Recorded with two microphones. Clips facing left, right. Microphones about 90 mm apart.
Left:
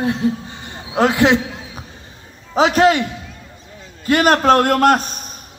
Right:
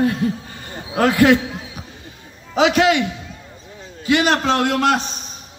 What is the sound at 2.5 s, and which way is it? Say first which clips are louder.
Speech: left 2 dB; 40° left (ahead or behind).